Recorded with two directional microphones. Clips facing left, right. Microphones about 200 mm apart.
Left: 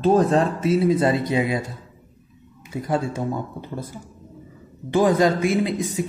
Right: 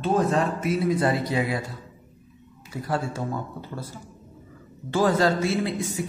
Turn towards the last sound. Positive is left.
turn(degrees=20)  # may be behind; listen again after turning